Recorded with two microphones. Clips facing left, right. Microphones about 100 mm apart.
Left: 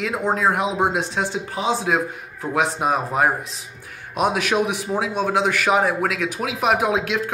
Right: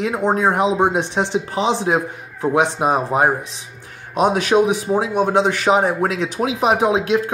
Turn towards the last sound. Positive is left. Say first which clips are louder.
# right 3 dB
turn(degrees=-25)  # may be behind; listen again after turning